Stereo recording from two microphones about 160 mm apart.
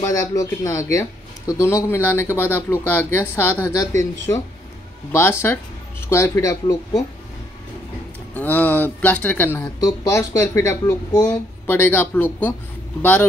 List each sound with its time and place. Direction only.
0.0 s speech: 20° left (ahead or behind)
8.4 s speech: 10° left (ahead or behind)